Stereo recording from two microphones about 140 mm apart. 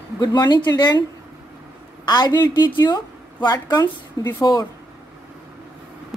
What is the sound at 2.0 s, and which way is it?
A woman's voice, 30° left (ahead or behind).